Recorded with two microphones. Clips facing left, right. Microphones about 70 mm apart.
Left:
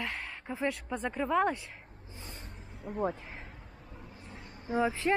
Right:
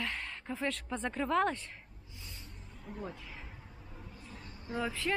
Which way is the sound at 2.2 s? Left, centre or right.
Left.